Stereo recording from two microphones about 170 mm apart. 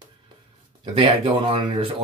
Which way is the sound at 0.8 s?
35° right (ahead or behind).